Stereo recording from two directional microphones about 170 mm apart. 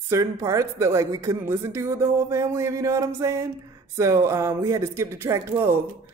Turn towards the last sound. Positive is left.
turn(degrees=-15)  # may be behind; listen again after turning